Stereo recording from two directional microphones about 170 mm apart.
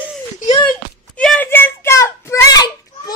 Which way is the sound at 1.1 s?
5° left (ahead or behind).